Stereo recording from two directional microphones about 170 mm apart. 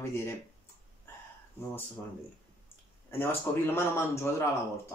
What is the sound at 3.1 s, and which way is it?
Speech, 10° left (ahead or behind).